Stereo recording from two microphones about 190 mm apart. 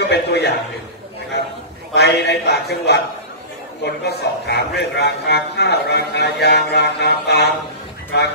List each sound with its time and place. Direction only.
0.0 s a man's voice: 60° left (ahead or behind)
2.0 s a man's voice: 60° left (ahead or behind)